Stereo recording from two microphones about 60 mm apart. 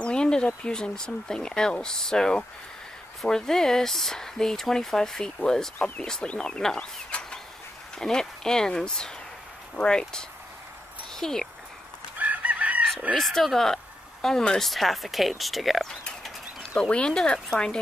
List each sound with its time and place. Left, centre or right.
0.0 s a sound: centre
0.7 s speech: centre
12.2 s chicken: right
13.1 s speech: centre
16.7 s speech: centre